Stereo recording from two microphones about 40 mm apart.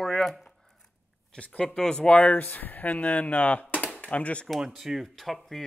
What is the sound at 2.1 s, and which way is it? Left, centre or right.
Speech, left.